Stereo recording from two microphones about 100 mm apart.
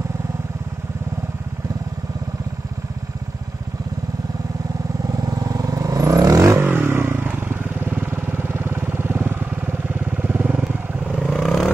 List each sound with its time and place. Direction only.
5.2 s vehicle: 40° right (ahead or behind)
6.6 s vehicle: 20° right (ahead or behind); by 11.7 s centre (ahead or behind)